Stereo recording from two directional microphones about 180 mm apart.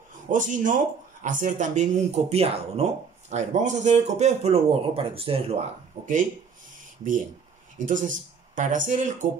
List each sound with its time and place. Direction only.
0.3 s speech: 45° right (ahead or behind)
7.8 s speech: 45° right (ahead or behind)